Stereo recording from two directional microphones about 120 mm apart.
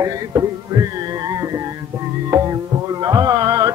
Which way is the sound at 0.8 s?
30° right (ahead or behind).